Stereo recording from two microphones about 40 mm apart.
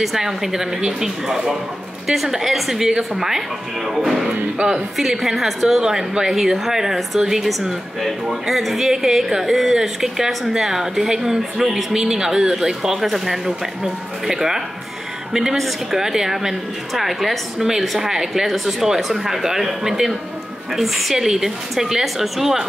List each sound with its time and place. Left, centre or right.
0.0 s a woman's voice: centre